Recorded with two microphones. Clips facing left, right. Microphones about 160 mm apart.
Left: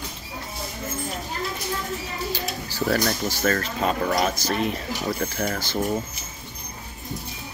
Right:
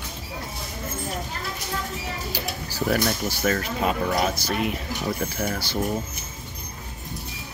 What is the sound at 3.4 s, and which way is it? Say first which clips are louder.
Speech: even; 10° right (ahead or behind).